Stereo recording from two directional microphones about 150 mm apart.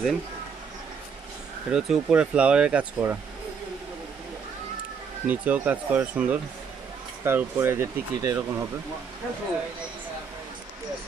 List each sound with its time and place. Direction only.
1.7 s speech: 5° right (ahead or behind)
5.2 s speech: 10° right (ahead or behind)